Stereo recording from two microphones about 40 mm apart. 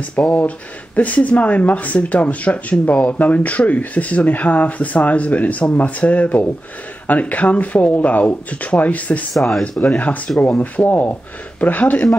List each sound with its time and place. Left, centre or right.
0.2 s speech: left
9.3 s speech: centre
9.9 s speech: left